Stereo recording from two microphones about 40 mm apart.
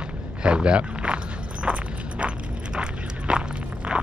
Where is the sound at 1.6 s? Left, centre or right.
Right.